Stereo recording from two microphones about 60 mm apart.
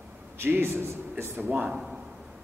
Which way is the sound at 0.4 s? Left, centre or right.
Right.